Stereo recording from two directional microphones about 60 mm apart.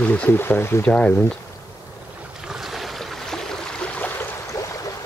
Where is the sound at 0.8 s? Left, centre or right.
Left.